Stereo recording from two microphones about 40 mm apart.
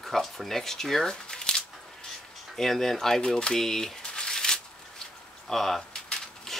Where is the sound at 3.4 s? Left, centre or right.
Centre.